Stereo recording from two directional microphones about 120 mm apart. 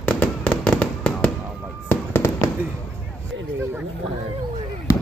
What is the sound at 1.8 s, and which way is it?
Fireworks, 20° left (ahead or behind).